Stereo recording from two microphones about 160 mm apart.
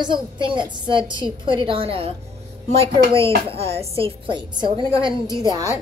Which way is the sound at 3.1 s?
35° right (ahead or behind).